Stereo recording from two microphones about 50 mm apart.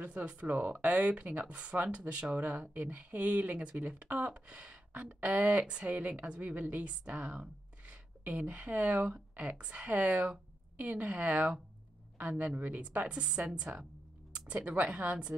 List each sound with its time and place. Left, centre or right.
0.0 s a woman's voice: right